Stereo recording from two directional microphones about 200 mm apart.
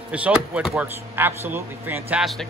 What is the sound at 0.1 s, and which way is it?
Speech, 5° right (ahead or behind).